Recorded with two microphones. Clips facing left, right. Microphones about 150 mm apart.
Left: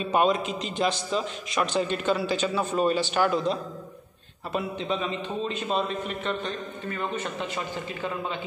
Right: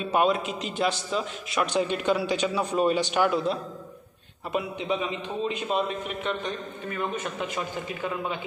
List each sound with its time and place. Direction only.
0.0 s a man's voice: 5° right (ahead or behind)